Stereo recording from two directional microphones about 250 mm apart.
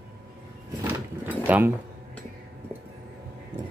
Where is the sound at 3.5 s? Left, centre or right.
Centre.